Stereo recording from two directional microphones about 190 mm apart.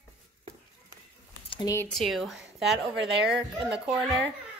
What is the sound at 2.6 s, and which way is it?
Speech, 65° right (ahead or behind).